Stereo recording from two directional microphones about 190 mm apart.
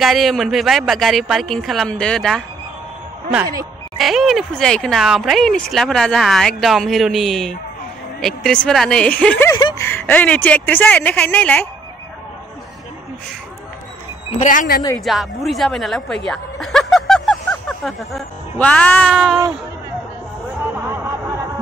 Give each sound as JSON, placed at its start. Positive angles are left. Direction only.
{"t": 0.0, "sound": "speech", "side_deg": 0}
{"t": 4.0, "sound": "speech", "side_deg": 0}
{"t": 9.6, "sound": "speech", "side_deg": 25}
{"t": 9.8, "sound": "speech", "side_deg": 10}
{"t": 14.4, "sound": "speech", "side_deg": 45}
{"t": 15.0, "sound": "speech", "side_deg": 0}
{"t": 16.3, "sound": "snicker", "side_deg": 0}